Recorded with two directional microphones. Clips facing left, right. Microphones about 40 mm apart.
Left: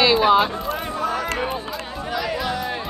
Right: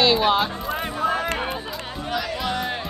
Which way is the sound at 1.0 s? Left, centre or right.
Right.